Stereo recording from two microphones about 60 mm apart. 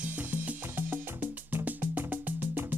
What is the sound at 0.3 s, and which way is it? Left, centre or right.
Music, right.